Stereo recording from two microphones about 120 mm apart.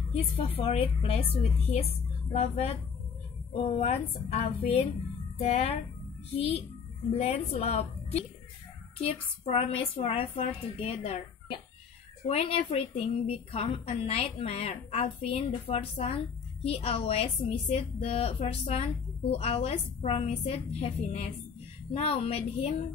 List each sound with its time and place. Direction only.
0.1 s a woman's voice: 55° left (ahead or behind)
3.8 s a woman's voice: 60° left (ahead or behind)
12.3 s a woman's voice: 55° left (ahead or behind)